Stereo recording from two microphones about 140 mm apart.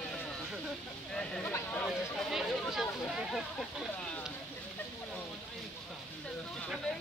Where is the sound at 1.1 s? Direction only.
5° left (ahead or behind).